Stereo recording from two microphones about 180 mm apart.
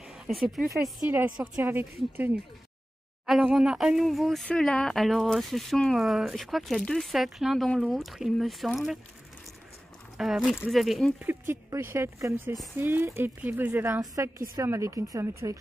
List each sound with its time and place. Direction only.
0.1 s a woman's voice: centre (ahead or behind)
1.4 s speech: 10° right (ahead or behind)
10.1 s speech: centre (ahead or behind)
11.2 s speech: 15° right (ahead or behind)